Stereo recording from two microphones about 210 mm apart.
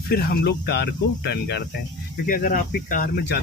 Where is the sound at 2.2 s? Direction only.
40° left (ahead or behind).